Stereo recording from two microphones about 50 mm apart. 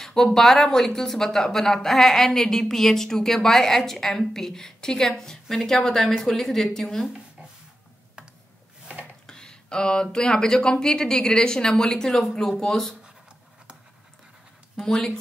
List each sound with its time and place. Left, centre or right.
0.0 s a woman's voice: centre
9.2 s a sound: centre
10.1 s a woman's voice: centre